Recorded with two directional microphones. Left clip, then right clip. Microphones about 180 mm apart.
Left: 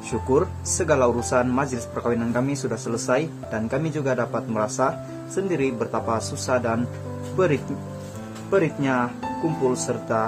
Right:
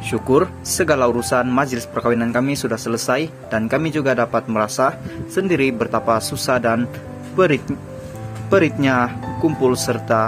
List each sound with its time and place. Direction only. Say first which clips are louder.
0.1 s speech: right 5 dB; 20° right (ahead or behind)